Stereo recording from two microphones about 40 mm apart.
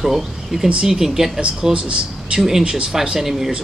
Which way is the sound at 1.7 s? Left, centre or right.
Right.